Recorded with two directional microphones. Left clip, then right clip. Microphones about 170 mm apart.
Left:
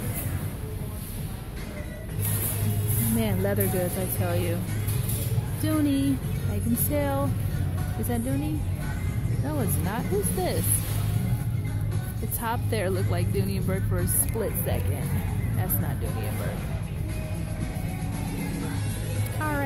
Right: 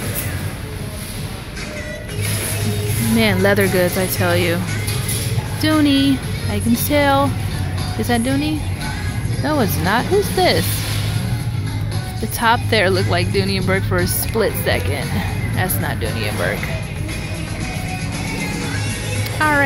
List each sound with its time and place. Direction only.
3.2 s speech: 10° right (ahead or behind)
5.6 s speech: 10° right (ahead or behind)
12.4 s speech: 10° right (ahead or behind)
19.4 s a sound: 10° right (ahead or behind)